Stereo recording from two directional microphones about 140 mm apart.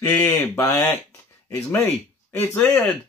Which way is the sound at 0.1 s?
15° left (ahead or behind).